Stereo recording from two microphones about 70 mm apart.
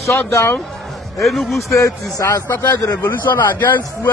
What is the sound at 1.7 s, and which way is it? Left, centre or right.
Speech, left.